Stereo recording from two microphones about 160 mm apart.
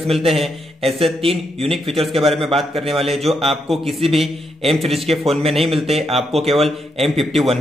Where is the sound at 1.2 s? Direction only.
35° right (ahead or behind).